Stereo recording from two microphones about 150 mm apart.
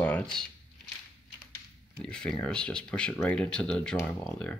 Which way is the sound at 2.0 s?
5° left (ahead or behind).